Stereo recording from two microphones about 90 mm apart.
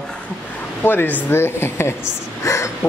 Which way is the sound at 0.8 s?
20° left (ahead or behind).